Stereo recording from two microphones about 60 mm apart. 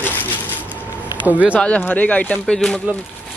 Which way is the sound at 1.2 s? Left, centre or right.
Right.